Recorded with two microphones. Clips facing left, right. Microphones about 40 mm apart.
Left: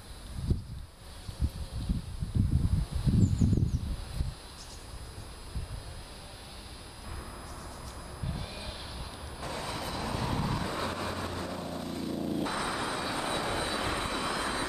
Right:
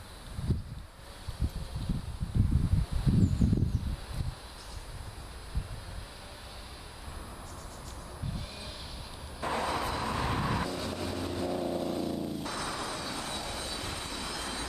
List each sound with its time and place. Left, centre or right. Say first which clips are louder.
8.3 s a sound: left 3 dB; centre
9.4 s vehicle: right 6 dB; centre
10.7 s vehicle: left 1 dB; left
11.4 s vehicle: right 5 dB; centre
12.3 s vehicle: left 4 dB; centre